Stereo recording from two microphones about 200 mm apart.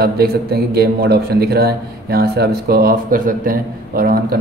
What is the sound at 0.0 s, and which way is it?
A man's voice, 50° right (ahead or behind).